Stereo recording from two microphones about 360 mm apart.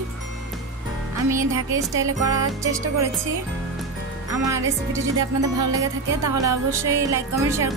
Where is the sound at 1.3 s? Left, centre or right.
Centre.